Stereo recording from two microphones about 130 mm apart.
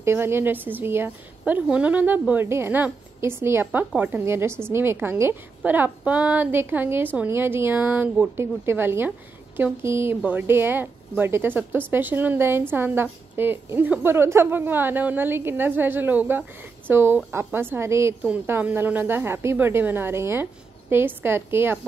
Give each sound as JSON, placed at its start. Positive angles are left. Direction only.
{"t": 0.0, "sound": "a woman's voice", "side_deg": -20}